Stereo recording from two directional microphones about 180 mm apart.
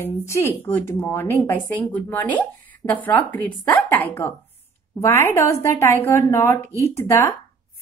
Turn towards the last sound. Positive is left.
turn(degrees=15)  # may be behind; listen again after turning